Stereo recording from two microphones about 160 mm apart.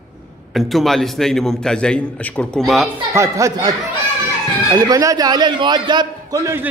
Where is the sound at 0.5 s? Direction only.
Centre (ahead or behind).